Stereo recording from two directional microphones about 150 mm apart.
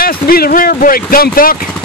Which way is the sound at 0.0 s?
80° left.